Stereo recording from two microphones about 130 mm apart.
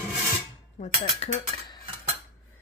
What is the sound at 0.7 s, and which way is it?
Speech, 60° left (ahead or behind).